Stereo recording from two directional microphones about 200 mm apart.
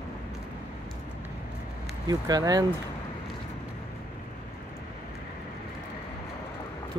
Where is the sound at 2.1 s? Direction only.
20° right (ahead or behind).